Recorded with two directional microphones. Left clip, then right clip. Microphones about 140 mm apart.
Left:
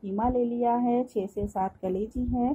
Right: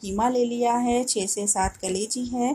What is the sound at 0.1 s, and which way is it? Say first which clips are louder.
Speech: right 4 dB; 15° right (ahead or behind).